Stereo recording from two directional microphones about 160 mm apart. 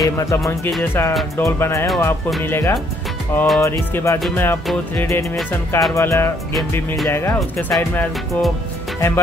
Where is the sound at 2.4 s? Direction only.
15° left (ahead or behind).